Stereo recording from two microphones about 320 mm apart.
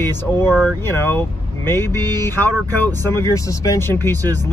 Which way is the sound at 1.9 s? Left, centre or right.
Centre.